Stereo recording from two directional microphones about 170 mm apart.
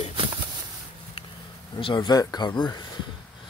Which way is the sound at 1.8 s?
25° left (ahead or behind).